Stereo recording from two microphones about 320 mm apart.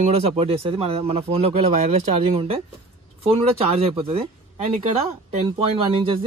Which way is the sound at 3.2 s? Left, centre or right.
Centre.